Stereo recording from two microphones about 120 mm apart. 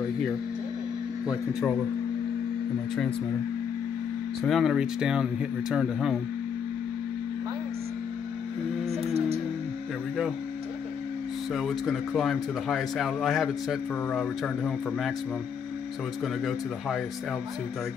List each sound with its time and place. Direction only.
1.2 s a man's voice: centre (ahead or behind)
4.4 s a man's voice: centre (ahead or behind)
8.8 s music: 60° right (ahead or behind)
11.5 s a man's voice: 5° left (ahead or behind)